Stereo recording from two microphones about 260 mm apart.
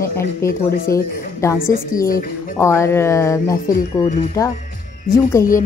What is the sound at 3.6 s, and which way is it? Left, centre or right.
Speech, left.